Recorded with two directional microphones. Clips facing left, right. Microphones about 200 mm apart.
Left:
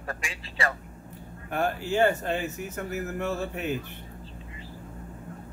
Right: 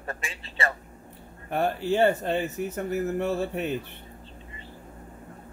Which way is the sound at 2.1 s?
30° right (ahead or behind).